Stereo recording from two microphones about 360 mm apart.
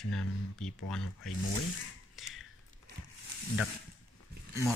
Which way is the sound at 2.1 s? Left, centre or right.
Centre.